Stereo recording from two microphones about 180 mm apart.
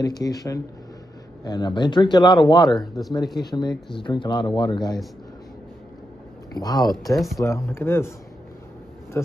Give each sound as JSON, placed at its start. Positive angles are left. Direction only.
{"t": 0.0, "sound": "speech", "side_deg": 20}
{"t": 2.7, "sound": "speech", "side_deg": 0}
{"t": 3.3, "sound": "speech", "side_deg": 25}
{"t": 6.5, "sound": "speech", "side_deg": 20}
{"t": 9.1, "sound": "a sound", "side_deg": 10}